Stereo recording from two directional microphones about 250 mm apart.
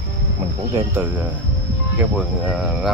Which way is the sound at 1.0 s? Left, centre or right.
Centre.